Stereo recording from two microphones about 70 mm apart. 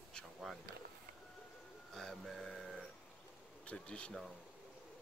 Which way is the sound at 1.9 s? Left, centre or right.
Centre.